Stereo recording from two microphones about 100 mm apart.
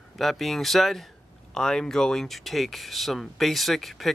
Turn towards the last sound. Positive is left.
turn(degrees=0)  # may be behind; listen again after turning